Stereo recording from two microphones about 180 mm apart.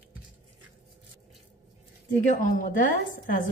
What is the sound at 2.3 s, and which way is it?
A woman's voice, 45° left (ahead or behind).